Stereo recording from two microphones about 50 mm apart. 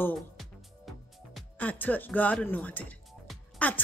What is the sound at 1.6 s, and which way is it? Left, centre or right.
Speech, left.